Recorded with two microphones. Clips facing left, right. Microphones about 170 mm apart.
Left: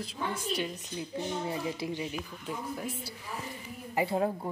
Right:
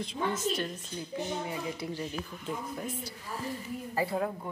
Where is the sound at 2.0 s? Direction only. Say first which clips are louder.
Even; 10° left (ahead or behind).